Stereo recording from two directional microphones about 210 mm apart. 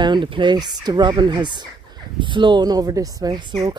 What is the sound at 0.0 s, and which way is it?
Speech, 20° right (ahead or behind).